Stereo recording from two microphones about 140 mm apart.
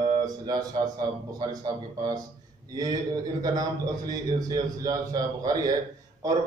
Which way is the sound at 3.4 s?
25° right (ahead or behind).